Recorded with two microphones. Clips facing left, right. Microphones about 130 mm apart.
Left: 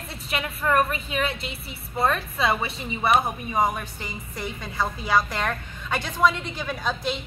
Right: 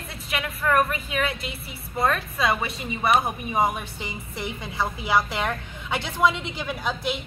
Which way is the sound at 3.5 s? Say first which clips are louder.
Right 1 dB; 15° right (ahead or behind).